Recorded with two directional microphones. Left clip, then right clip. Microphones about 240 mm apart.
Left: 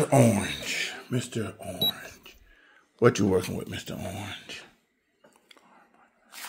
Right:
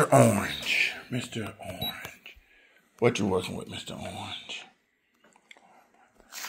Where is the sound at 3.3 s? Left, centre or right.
Left.